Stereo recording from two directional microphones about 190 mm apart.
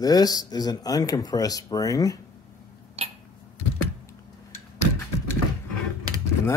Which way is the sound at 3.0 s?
35° right (ahead or behind).